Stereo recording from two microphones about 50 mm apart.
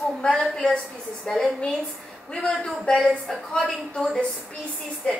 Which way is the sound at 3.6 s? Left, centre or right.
Left.